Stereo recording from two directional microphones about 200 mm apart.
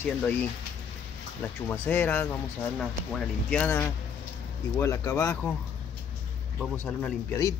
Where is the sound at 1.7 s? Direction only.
10° left (ahead or behind).